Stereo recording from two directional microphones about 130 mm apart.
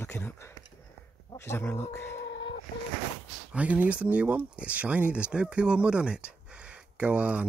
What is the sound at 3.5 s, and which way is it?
Speech, 10° right (ahead or behind).